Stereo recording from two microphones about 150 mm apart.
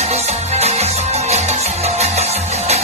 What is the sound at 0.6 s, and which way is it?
Music, 45° right (ahead or behind).